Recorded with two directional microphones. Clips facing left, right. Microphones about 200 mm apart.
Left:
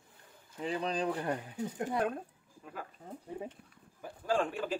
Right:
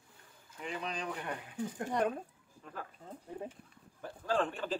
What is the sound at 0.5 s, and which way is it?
Speech, 35° left (ahead or behind).